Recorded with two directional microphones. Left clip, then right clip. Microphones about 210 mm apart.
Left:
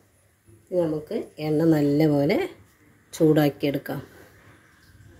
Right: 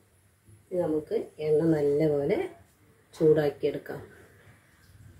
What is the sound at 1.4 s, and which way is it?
Speech, 50° left (ahead or behind).